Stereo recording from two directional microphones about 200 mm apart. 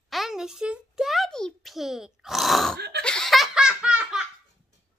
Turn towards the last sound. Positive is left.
turn(degrees=-5)  # may be behind; listen again after turning